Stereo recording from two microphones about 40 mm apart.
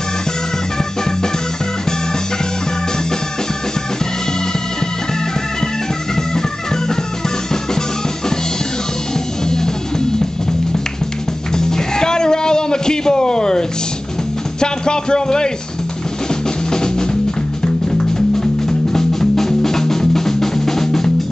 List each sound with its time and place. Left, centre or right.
9.5 s music: centre
11.5 s music: centre
14.6 s speech: centre
16.7 s music: centre